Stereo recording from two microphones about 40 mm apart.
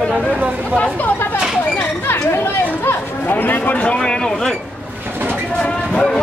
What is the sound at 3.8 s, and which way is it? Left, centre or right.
Speech, left.